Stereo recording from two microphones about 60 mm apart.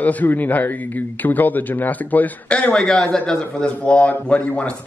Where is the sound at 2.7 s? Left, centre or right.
Centre.